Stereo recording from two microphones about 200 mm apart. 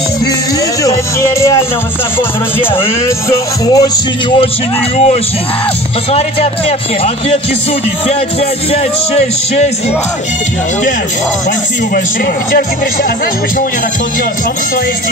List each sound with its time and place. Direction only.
0.8 s speech: 15° left (ahead or behind)
4.9 s a man's voice: 35° left (ahead or behind)
8.7 s a man's voice: 35° left (ahead or behind)